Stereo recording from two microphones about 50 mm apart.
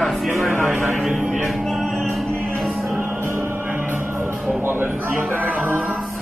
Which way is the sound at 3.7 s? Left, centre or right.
Right.